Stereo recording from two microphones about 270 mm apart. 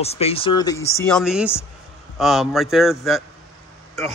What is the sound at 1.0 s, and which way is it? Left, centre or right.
Speech, centre.